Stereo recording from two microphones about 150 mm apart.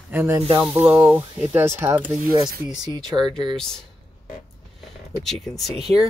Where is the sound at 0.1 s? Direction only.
15° right (ahead or behind).